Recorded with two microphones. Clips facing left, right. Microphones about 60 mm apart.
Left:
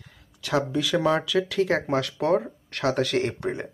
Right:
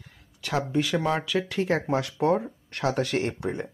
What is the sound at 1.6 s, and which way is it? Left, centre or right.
Speech, left.